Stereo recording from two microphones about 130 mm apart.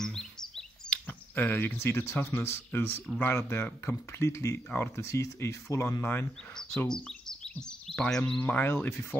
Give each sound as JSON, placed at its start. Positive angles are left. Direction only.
{"t": 0.0, "sound": "chirp", "side_deg": 5}
{"t": 1.0, "sound": "speech", "side_deg": 15}
{"t": 6.9, "sound": "chirp", "side_deg": 5}
{"t": 7.6, "sound": "a sound", "side_deg": 5}
{"t": 8.4, "sound": "speech", "side_deg": 10}